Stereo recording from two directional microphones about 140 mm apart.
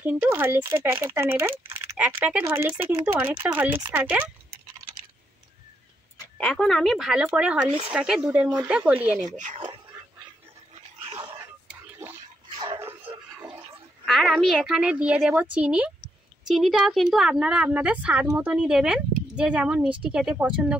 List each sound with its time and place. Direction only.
0.0 s speech: 15° right (ahead or behind)
6.3 s speech: 5° left (ahead or behind)
11.1 s a sound: 25° right (ahead or behind)
12.5 s dog: 40° right (ahead or behind)
14.0 s speech: centre (ahead or behind)
18.2 s speech: 20° right (ahead or behind)
18.5 s speech: 5° right (ahead or behind)